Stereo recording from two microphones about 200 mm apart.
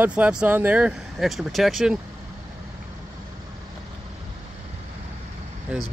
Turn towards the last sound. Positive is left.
turn(degrees=-5)  # may be behind; listen again after turning